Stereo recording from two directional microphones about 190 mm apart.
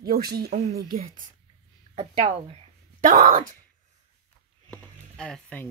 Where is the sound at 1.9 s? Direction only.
30° right (ahead or behind).